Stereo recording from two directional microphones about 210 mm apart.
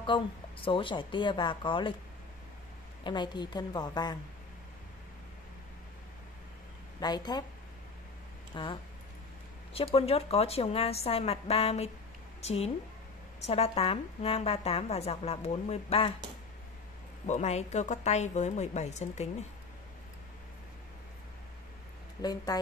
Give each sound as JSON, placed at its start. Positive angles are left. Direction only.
{"t": 0.0, "sound": "a woman's voice", "side_deg": 25}
{"t": 3.0, "sound": "a woman's voice", "side_deg": 20}
{"t": 7.0, "sound": "a woman's voice", "side_deg": 20}
{"t": 8.5, "sound": "a woman's voice", "side_deg": 20}
{"t": 9.8, "sound": "a woman's voice", "side_deg": 25}
{"t": 17.3, "sound": "a woman's voice", "side_deg": 30}
{"t": 22.2, "sound": "a woman's voice", "side_deg": 20}